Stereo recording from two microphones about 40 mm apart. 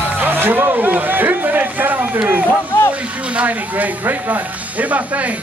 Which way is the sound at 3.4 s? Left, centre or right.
Right.